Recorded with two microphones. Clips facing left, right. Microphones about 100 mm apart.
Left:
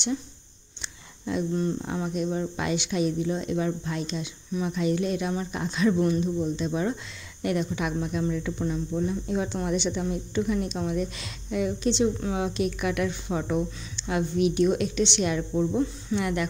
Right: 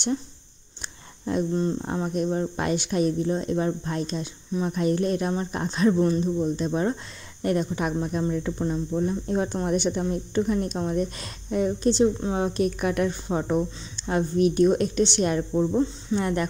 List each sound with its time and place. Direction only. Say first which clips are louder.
1.2 s speech: right 2 dB; 35° right (ahead or behind)